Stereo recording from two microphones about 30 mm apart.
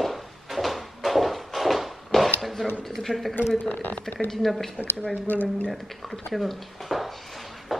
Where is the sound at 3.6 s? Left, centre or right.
Left.